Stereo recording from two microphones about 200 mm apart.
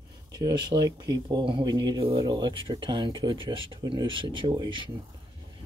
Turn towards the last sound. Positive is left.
turn(degrees=-25)  # may be behind; listen again after turning